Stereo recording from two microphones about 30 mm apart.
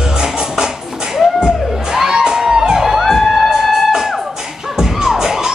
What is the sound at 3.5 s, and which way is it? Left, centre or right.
Music, centre.